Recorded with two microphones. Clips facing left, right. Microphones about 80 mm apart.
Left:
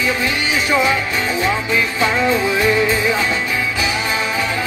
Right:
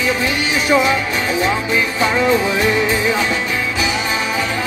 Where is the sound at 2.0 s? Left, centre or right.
Centre.